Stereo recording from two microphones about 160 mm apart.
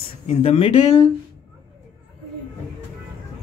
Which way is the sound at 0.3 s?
35° left (ahead or behind).